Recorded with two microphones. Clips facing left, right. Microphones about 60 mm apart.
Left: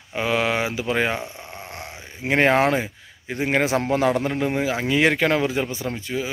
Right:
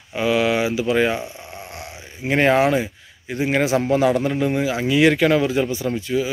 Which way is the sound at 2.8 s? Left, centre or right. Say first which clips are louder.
Right 1 dB; left.